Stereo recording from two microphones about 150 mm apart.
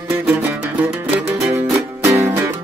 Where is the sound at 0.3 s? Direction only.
10° right (ahead or behind).